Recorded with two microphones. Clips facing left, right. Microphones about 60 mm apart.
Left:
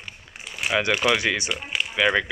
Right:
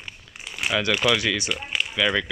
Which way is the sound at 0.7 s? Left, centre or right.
Left.